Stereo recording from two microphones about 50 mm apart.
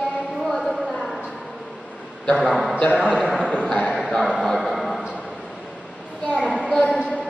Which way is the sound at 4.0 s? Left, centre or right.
Centre.